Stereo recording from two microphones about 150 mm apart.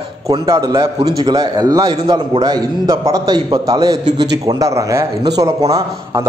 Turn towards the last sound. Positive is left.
turn(degrees=-25)  # may be behind; listen again after turning